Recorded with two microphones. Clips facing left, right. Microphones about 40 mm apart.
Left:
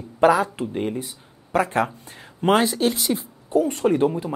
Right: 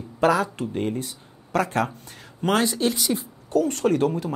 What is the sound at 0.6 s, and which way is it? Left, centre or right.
Speech, centre.